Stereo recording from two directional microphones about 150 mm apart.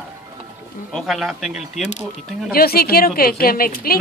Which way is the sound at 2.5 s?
90° left.